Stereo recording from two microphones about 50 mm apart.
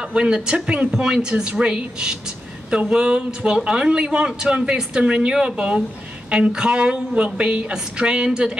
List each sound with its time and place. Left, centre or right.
0.0 s a woman's voice: centre